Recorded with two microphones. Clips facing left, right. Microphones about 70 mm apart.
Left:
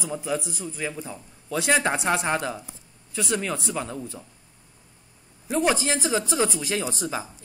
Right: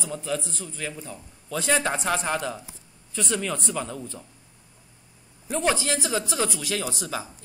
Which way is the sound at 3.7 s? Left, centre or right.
Left.